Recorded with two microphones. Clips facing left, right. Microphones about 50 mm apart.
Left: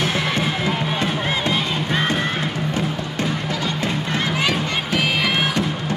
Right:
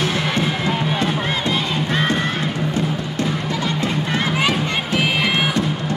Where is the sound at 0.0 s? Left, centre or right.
Centre.